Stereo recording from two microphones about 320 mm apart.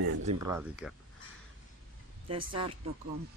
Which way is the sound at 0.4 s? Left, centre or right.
Centre.